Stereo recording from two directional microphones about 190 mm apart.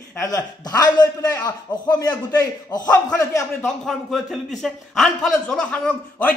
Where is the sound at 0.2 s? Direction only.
20° left (ahead or behind).